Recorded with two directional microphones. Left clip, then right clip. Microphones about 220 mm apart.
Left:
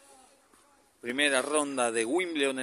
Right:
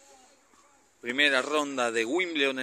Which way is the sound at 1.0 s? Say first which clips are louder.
Right 3 dB; 5° left (ahead or behind).